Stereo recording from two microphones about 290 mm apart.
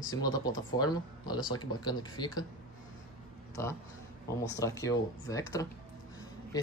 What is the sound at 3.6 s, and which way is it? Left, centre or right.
Speech, centre.